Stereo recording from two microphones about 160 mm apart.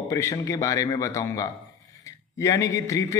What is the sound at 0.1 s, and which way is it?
A man's voice, 20° left (ahead or behind).